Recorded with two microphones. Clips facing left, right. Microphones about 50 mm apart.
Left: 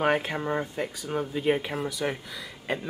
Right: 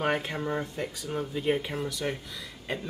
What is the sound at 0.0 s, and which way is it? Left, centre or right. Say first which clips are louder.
Speech: left 3 dB; centre.